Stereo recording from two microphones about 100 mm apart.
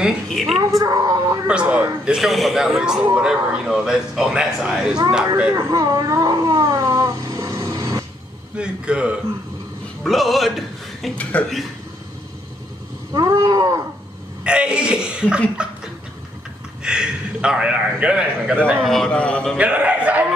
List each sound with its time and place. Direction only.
0.3 s a man's voice: centre (ahead or behind)
0.6 s speech: 35° right (ahead or behind)
1.5 s a man's voice: 10° right (ahead or behind)
5.5 s speech: 35° right (ahead or behind)
8.5 s a man's voice: 10° right (ahead or behind)
10.0 s speech: centre (ahead or behind)
11.3 s a man's voice: 15° left (ahead or behind)
13.1 s a sound: 40° right (ahead or behind)
14.4 s a man's voice: 10° right (ahead or behind)
15.5 s a sound: 10° right (ahead or behind)
16.8 s a man's voice: 10° right (ahead or behind)
18.9 s a man's voice: 5° left (ahead or behind)
19.5 s a man's voice: 10° right (ahead or behind)